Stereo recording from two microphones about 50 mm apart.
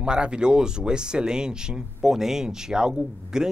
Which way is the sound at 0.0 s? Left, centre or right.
Centre.